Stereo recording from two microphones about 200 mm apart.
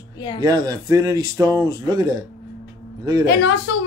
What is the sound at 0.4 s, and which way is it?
Speech, 20° right (ahead or behind).